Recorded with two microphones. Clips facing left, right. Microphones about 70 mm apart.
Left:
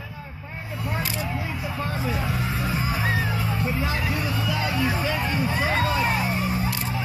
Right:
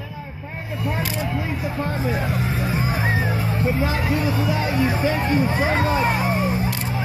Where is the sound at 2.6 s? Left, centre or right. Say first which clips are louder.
Right 2 dB; right.